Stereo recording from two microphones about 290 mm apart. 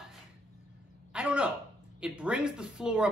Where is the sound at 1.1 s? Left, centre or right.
Centre.